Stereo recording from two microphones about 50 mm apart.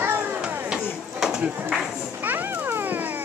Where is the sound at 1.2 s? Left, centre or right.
Centre.